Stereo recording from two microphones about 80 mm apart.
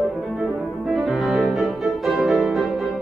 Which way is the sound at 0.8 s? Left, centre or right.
Centre.